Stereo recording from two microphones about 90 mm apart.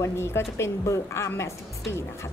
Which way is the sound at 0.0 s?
30° left (ahead or behind).